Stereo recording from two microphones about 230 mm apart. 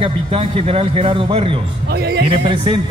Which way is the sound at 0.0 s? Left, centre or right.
Right.